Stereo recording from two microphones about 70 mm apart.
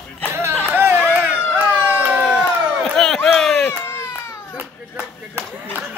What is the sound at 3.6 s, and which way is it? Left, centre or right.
Baby cry, left.